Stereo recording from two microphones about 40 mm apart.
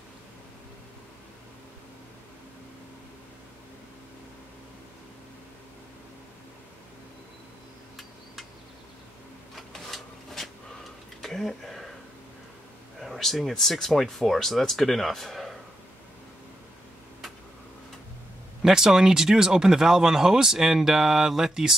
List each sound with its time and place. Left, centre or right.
9.7 s a sound: centre
13.0 s speech: centre
18.6 s speech: centre